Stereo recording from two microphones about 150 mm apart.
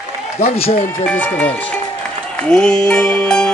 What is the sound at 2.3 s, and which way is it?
Music, 5° left (ahead or behind).